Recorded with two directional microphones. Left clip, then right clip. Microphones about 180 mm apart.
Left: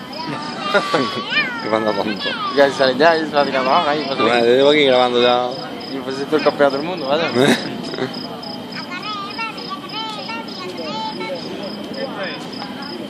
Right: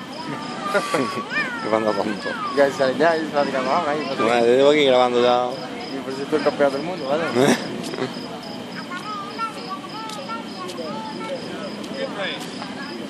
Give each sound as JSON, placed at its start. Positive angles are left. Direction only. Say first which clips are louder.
{"t": 0.9, "sound": "speech", "louder": "left 5 dB", "side_deg": 25}
{"t": 1.7, "sound": "speech", "louder": "even", "side_deg": 0}
{"t": 2.2, "sound": "speech", "louder": "left 5 dB", "side_deg": 20}
{"t": 4.3, "sound": "speech", "louder": "left 2 dB", "side_deg": 5}
{"t": 6.3, "sound": "speech", "louder": "left 4 dB", "side_deg": 25}
{"t": 7.3, "sound": "speech", "louder": "left 3 dB", "side_deg": 0}